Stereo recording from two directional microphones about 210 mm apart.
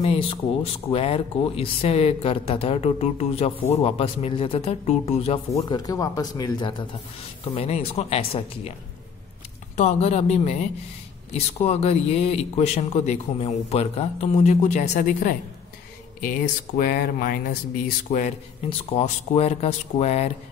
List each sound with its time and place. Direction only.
0.0 s speech: 25° left (ahead or behind)
5.6 s speech: 20° left (ahead or behind)
9.8 s speech: 30° left (ahead or behind)
18.7 s speech: 30° left (ahead or behind)